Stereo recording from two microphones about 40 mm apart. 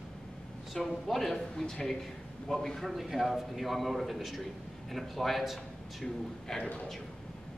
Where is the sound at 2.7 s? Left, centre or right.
Centre.